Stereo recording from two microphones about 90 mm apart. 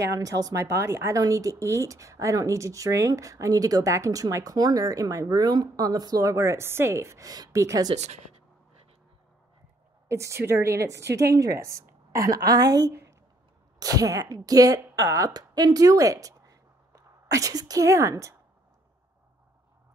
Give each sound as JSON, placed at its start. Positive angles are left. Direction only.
{"t": 0.1, "sound": "speech", "side_deg": -40}
{"t": 10.0, "sound": "speech", "side_deg": -35}
{"t": 15.3, "sound": "speech", "side_deg": -50}